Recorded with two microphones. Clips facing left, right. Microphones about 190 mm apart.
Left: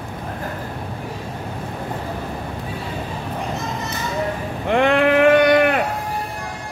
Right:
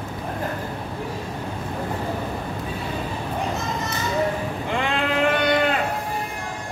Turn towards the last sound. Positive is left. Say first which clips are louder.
# left 7 dB
turn(degrees=60)  # may be behind; listen again after turning